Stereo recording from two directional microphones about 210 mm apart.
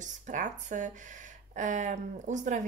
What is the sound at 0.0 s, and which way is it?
A woman's voice, 40° right (ahead or behind).